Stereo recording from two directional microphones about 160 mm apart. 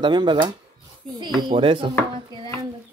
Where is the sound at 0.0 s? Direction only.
30° right (ahead or behind).